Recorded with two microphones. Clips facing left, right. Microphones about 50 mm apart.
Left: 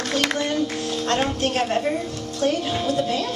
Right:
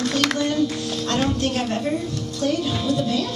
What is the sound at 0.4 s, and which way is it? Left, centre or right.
Music, left.